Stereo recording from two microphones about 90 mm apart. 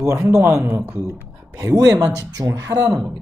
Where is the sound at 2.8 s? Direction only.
5° right (ahead or behind).